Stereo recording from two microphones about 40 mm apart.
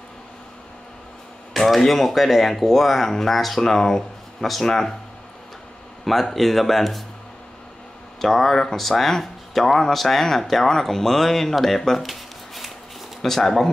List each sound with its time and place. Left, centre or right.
1.5 s a sound: centre
1.9 s speech: centre
3.7 s speech: centre
6.0 s speech: centre
8.2 s speech: centre
12.0 s shuffling cards: centre
13.2 s speech: centre